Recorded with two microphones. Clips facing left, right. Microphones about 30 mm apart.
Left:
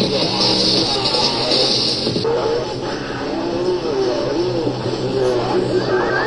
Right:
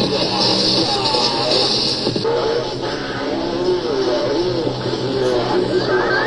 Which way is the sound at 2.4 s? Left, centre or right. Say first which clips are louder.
Even; right.